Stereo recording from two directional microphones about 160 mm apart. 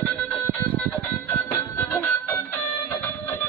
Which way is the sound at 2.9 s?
15° left (ahead or behind).